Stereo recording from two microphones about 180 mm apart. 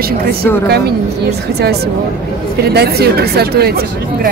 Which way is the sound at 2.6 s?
65° right (ahead or behind).